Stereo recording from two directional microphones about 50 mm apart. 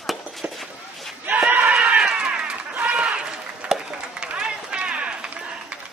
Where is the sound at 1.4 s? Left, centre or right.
Right.